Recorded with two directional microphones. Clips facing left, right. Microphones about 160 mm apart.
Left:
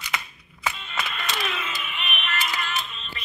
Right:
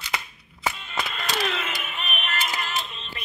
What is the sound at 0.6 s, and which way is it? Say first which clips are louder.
Music: right 1 dB; 35° right (ahead or behind).